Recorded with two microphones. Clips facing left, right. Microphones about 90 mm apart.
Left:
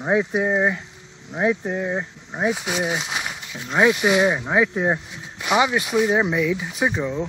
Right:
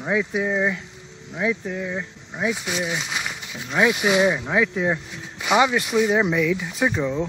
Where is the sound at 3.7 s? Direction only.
25° left (ahead or behind).